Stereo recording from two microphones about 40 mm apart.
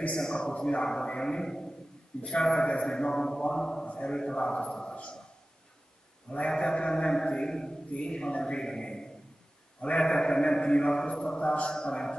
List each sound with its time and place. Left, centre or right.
0.1 s a man's voice: centre
3.8 s a man's voice: left
4.1 s a man's voice: centre
6.5 s a man's voice: left